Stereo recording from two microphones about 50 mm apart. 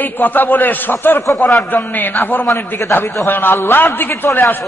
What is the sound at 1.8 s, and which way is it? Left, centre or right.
Speech, left.